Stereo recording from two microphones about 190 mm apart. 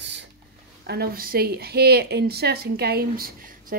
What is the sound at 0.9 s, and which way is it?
A woman's voice, 50° right (ahead or behind).